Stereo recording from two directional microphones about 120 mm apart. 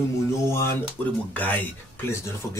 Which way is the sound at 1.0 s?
15° left (ahead or behind).